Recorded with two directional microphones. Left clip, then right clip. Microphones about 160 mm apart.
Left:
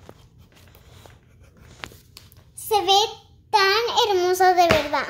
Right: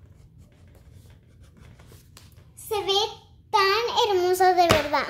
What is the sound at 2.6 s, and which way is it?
Speech, 45° left (ahead or behind).